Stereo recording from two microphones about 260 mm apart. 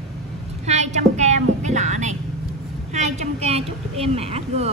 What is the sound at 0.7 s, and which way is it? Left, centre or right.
Child singing, right.